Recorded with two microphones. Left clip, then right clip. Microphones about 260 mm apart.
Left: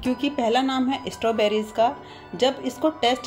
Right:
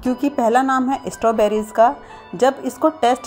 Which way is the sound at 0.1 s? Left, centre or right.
Right.